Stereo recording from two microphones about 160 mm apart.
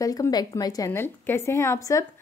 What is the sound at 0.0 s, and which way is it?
A woman's voice, 20° left (ahead or behind).